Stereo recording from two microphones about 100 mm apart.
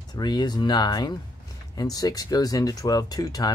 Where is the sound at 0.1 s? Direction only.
45° left (ahead or behind).